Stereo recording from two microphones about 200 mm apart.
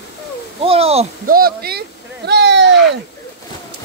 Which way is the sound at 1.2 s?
45° right (ahead or behind).